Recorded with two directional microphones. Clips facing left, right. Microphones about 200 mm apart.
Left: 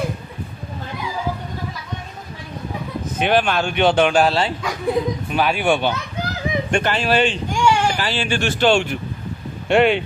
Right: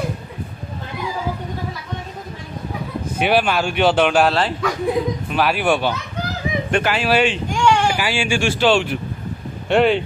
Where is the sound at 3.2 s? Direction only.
5° right (ahead or behind).